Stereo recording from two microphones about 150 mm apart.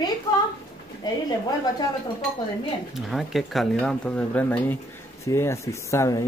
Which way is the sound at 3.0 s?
Centre (ahead or behind).